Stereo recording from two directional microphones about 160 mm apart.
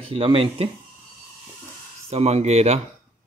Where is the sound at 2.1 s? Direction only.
40° right (ahead or behind).